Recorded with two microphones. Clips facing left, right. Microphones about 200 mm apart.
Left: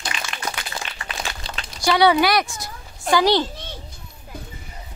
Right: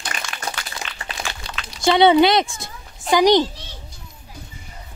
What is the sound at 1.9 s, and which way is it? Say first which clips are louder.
A woman's voice: right 3 dB; 25° right (ahead or behind).